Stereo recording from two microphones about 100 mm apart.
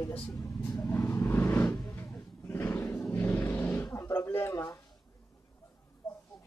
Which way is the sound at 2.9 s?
25° left (ahead or behind).